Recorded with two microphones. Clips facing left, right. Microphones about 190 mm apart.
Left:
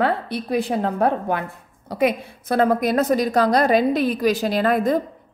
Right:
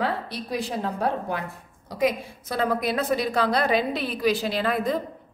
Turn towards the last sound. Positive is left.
turn(degrees=45)  # may be behind; listen again after turning